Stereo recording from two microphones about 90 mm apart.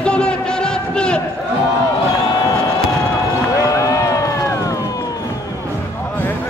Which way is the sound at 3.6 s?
40° left (ahead or behind).